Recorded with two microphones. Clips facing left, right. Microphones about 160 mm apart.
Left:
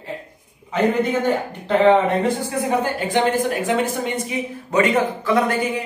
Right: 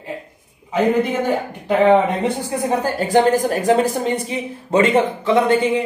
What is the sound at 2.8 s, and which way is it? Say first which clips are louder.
A woman's voice: right 4 dB; 40° right (ahead or behind).